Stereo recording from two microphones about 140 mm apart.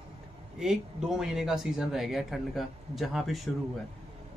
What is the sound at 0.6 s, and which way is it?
Speech, 5° right (ahead or behind).